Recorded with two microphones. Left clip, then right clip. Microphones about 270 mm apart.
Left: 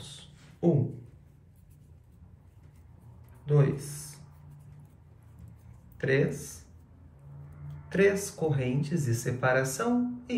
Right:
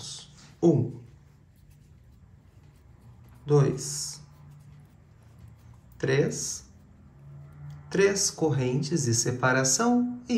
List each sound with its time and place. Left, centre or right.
0.0 s a sound: centre
3.4 s speech: centre
5.9 s speech: centre
7.6 s speech: centre